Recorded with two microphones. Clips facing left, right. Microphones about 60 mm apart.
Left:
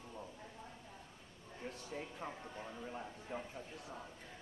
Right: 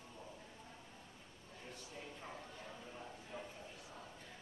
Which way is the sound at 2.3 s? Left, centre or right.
Centre.